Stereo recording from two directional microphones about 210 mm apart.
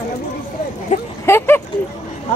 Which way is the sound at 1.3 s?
10° left (ahead or behind).